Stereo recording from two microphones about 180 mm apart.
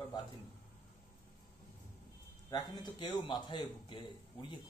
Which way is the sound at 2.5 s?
25° left (ahead or behind).